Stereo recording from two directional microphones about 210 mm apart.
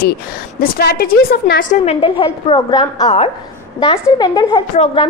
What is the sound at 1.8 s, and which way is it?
A woman's voice, 25° left (ahead or behind).